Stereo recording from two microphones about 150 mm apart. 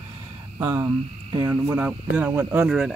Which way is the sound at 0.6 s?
15° right (ahead or behind).